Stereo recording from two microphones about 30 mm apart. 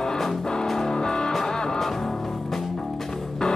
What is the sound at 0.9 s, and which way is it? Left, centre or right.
Music, left.